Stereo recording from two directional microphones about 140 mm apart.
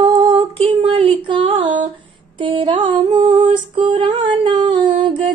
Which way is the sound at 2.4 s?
35° right (ahead or behind).